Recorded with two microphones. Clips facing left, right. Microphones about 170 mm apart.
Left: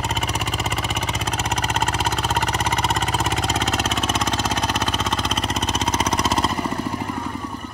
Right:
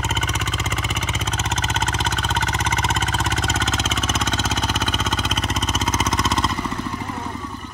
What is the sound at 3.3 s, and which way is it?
Vehicle, 35° left (ahead or behind).